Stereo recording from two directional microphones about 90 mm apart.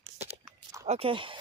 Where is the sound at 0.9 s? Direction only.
80° right.